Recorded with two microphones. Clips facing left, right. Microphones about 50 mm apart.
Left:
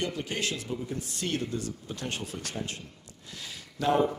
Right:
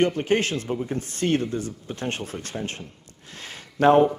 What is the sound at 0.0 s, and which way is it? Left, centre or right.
Speech, right.